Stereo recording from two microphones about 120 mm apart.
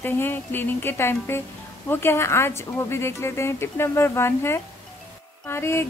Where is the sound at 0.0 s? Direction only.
15° left (ahead or behind).